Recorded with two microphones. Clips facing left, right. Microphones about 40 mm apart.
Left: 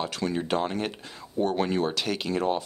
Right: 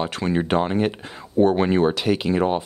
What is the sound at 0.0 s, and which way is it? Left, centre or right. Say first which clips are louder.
Speech: right 6 dB; right.